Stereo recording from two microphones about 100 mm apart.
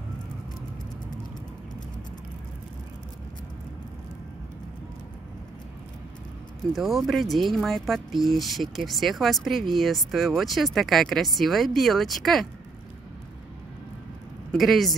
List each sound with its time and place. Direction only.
6.7 s speech: centre (ahead or behind)
14.5 s speech: centre (ahead or behind)